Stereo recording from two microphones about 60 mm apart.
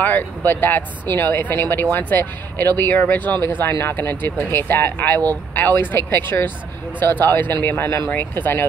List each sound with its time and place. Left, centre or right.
0.5 s speech: left
3.3 s speech: left